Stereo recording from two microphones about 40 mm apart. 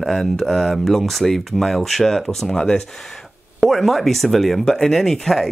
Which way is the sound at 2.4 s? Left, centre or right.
Left.